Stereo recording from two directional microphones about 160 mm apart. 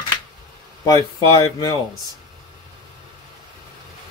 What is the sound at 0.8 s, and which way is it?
Speech, 20° left (ahead or behind).